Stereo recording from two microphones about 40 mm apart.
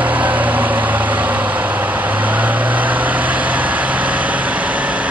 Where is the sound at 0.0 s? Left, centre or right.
Right.